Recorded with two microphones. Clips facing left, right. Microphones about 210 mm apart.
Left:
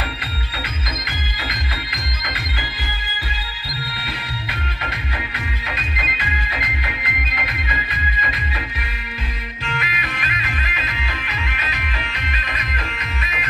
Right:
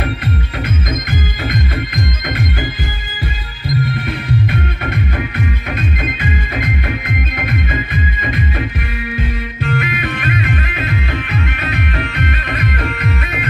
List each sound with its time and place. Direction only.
5.9 s music: 50° right (ahead or behind)
9.7 s music: 55° right (ahead or behind)